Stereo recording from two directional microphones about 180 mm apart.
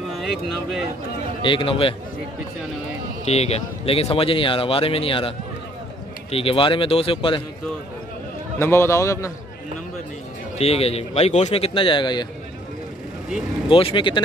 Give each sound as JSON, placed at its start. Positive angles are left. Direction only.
{"t": 0.2, "sound": "speech", "side_deg": 0}
{"t": 1.4, "sound": "a man's voice", "side_deg": 30}
{"t": 3.3, "sound": "speech", "side_deg": 35}
{"t": 6.3, "sound": "speech", "side_deg": 30}
{"t": 8.5, "sound": "a man's voice", "side_deg": 15}
{"t": 10.6, "sound": "speech", "side_deg": 35}
{"t": 13.7, "sound": "a man's voice", "side_deg": 30}